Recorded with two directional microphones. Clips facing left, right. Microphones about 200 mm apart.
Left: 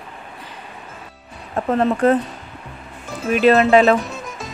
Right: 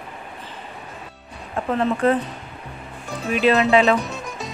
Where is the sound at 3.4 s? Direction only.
50° left (ahead or behind).